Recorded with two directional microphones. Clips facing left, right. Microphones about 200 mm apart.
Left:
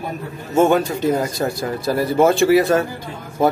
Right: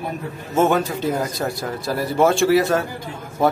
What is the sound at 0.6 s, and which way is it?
A man's voice, centre (ahead or behind).